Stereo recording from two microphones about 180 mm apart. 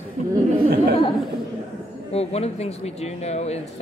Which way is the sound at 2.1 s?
35° left (ahead or behind).